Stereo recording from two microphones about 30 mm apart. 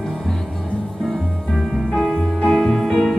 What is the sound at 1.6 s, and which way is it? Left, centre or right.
Music, centre.